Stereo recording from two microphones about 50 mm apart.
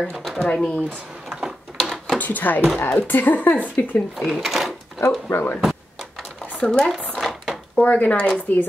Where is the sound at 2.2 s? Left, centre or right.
Left.